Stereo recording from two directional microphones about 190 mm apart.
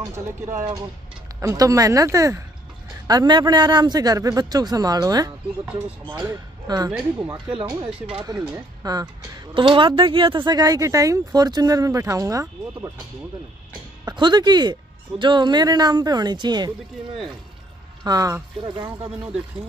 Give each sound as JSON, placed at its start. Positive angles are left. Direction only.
{"t": 0.1, "sound": "speech", "side_deg": -15}
{"t": 7.5, "sound": "speech", "side_deg": -25}
{"t": 14.0, "sound": "speech", "side_deg": -20}
{"t": 18.0, "sound": "speech", "side_deg": -20}